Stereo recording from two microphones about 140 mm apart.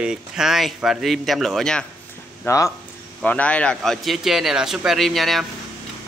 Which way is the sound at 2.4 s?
20° left (ahead or behind).